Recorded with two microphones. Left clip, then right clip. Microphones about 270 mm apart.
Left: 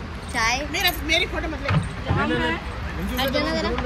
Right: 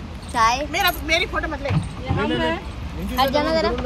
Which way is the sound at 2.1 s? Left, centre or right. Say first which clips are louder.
Right 1 dB; centre.